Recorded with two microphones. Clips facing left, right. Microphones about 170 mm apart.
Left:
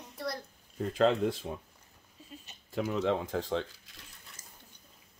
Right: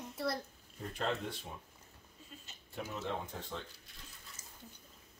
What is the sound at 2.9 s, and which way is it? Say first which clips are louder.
Speech: left 11 dB; 90° left.